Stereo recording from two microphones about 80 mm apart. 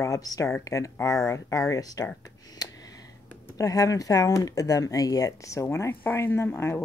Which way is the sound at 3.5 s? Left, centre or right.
Left.